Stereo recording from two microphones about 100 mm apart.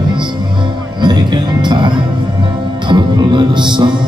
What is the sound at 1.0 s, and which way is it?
Music, 50° right (ahead or behind).